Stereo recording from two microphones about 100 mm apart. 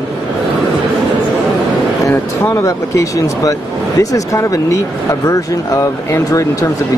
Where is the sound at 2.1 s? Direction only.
30° left (ahead or behind).